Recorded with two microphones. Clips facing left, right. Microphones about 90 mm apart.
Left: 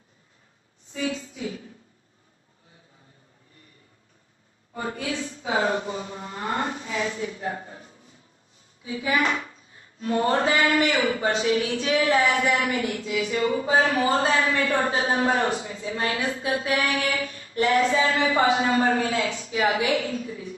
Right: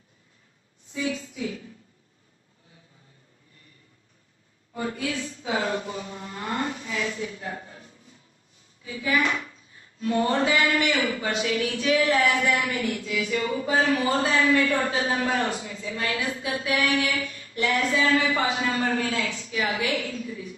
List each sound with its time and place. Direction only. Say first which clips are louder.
4.7 s a woman's voice: even; 30° left (ahead or behind)
9.9 s a woman's voice: left 1 dB; 35° left (ahead or behind)
14.3 s speech: right 2 dB; 20° left (ahead or behind)
14.8 s a woman's voice: left 2 dB; 35° left (ahead or behind)